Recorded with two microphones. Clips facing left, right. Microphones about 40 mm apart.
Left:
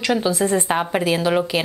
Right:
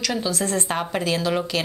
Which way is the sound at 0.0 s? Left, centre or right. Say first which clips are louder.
Left 5 dB; left.